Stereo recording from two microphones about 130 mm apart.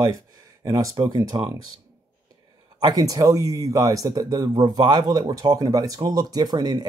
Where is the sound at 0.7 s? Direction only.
25° right (ahead or behind).